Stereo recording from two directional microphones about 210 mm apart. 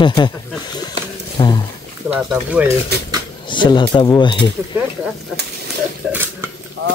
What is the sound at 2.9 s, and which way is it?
Speech, 50° right (ahead or behind).